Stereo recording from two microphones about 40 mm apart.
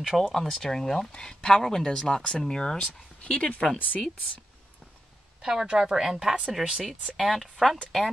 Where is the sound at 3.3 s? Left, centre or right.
Left.